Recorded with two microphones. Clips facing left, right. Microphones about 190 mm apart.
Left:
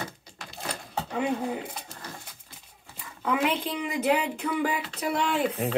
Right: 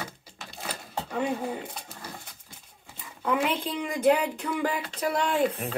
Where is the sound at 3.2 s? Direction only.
5° left (ahead or behind).